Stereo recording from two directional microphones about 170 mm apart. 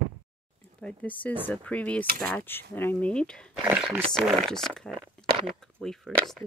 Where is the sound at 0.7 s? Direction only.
10° left (ahead or behind).